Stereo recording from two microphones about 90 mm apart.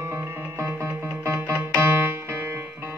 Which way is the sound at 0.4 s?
25° right (ahead or behind).